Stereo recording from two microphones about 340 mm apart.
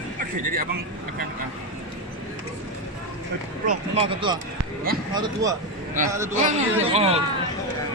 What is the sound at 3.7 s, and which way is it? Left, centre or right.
Speech, centre.